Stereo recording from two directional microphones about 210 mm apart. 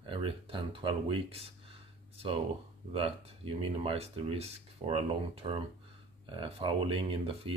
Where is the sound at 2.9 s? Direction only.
25° right (ahead or behind).